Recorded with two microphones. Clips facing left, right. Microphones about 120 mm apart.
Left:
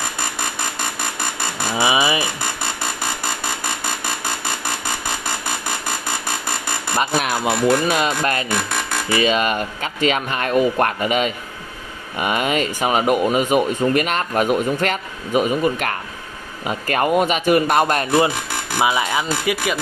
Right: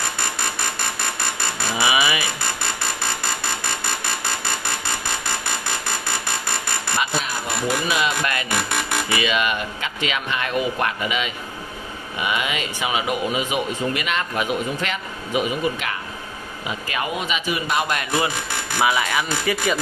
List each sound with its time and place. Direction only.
1.8 s a sound: 30° left (ahead or behind)
7.2 s music: 75° left (ahead or behind)
7.9 s music: 40° left (ahead or behind)
9.1 s speech: 40° left (ahead or behind)
18.8 s speech: 20° left (ahead or behind)
19.4 s speech: 5° left (ahead or behind)